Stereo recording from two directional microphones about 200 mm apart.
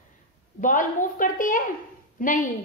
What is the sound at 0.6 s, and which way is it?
A woman's voice, 40° left (ahead or behind).